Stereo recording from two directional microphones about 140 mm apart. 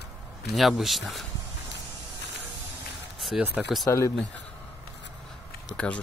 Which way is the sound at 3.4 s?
5° right (ahead or behind).